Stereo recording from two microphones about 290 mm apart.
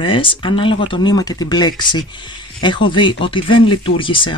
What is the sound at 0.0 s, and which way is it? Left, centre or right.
Speech, centre.